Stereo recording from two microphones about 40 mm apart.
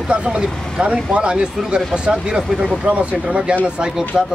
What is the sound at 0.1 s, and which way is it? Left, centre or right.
Speech, right.